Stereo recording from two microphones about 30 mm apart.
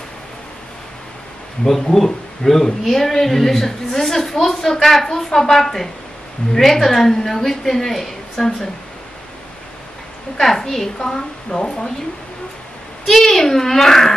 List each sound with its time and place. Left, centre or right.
1.6 s a woman's voice: centre
8.4 s speech: left
10.4 s a woman's voice: centre
13.1 s a woman's voice: centre